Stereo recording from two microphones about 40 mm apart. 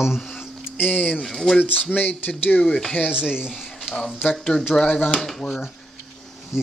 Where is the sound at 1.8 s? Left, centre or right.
Left.